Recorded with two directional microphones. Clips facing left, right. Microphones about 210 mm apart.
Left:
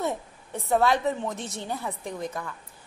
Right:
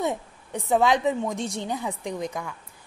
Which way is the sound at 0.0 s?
15° right (ahead or behind).